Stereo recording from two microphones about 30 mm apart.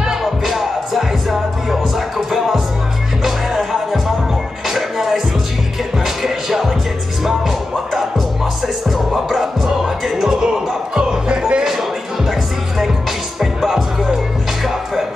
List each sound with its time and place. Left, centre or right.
0.2 s music: centre
10.4 s music: right
12.3 s music: centre